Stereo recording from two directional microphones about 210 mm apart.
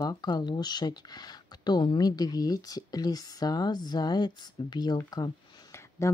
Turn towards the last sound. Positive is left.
turn(degrees=15)  # may be behind; listen again after turning